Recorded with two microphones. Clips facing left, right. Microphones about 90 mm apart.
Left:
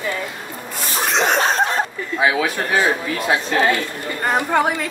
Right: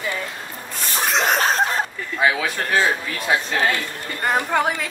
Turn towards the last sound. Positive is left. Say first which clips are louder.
# left 3 dB
turn(degrees=0)  # may be behind; listen again after turning